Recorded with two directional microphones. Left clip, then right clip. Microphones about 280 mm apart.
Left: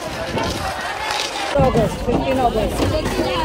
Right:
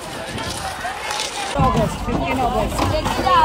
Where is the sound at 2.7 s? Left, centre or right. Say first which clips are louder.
Even; centre.